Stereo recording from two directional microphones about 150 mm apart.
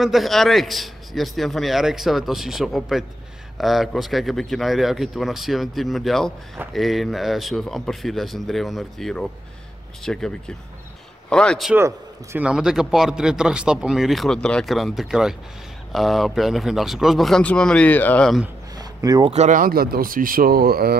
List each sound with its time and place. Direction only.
0.0 s a man's voice: centre (ahead or behind)
11.7 s a man's voice: 15° right (ahead or behind)
12.4 s a man's voice: 5° right (ahead or behind)
18.8 s a sound: 25° right (ahead or behind)
19.3 s speech: 55° right (ahead or behind); by 21.0 s 90° right